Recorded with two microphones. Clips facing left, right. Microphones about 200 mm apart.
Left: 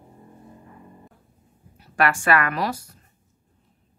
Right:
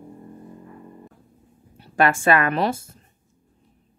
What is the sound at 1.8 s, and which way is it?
A woman's voice, 25° right (ahead or behind).